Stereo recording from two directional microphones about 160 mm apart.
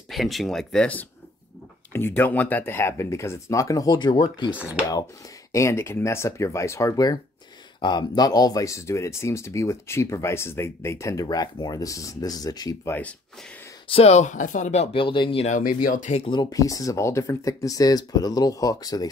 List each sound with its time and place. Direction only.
0.1 s speech: centre (ahead or behind); by 4.5 s 25° left (ahead or behind)
4.5 s speech: 10° right (ahead or behind)
5.5 s speech: 20° left (ahead or behind)
13.8 s speech: 40° left (ahead or behind)
15.4 s speech: 55° left (ahead or behind)
16.3 s speech: 25° left (ahead or behind)